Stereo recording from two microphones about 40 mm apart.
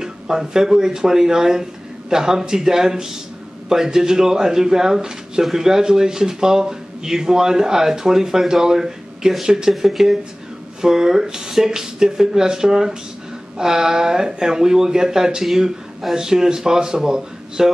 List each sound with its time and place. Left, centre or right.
0.0 s speech: centre
9.8 s speech: centre